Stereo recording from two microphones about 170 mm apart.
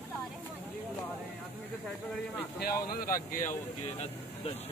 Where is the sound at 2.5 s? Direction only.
65° left (ahead or behind); by 4.5 s 40° left (ahead or behind).